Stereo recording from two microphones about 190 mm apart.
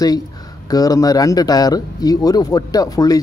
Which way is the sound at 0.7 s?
20° left (ahead or behind).